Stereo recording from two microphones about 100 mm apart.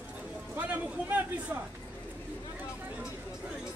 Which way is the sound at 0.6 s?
15° right (ahead or behind).